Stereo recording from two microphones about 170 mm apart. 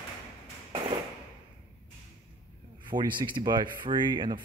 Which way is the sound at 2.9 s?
25° right (ahead or behind).